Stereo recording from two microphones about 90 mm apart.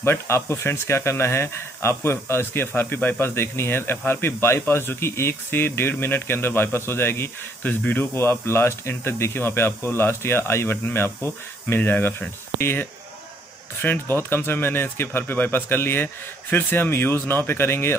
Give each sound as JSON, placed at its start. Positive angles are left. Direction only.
{"t": 0.0, "sound": "speech", "side_deg": 30}